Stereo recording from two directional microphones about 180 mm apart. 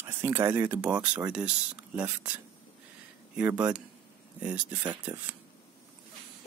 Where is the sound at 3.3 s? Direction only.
10° right (ahead or behind).